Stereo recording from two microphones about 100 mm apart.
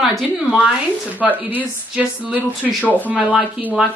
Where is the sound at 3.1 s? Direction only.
5° right (ahead or behind).